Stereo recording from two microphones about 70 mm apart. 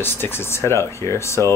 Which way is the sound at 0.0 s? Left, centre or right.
Left.